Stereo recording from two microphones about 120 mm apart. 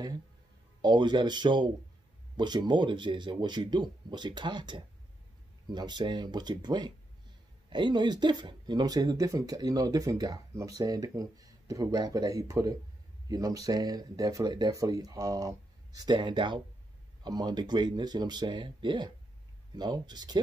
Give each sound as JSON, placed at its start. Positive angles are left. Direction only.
{"t": 0.8, "sound": "speech", "side_deg": -40}
{"t": 16.0, "sound": "speech", "side_deg": -40}